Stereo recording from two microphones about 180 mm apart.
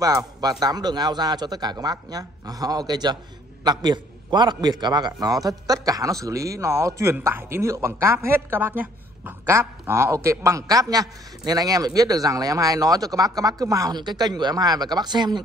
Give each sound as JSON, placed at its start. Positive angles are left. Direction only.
{"t": 0.0, "sound": "a man's voice", "side_deg": -20}